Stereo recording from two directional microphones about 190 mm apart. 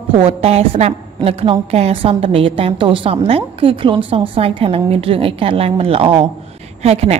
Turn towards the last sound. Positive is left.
turn(degrees=-35)  # may be behind; listen again after turning